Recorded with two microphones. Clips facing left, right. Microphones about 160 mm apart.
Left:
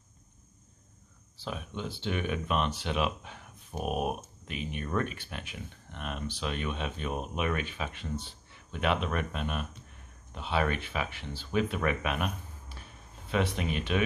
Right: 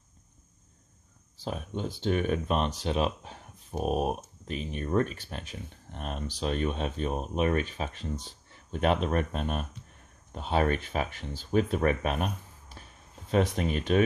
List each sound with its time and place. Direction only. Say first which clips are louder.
1.4 s speech: right 3 dB; 40° right (ahead or behind)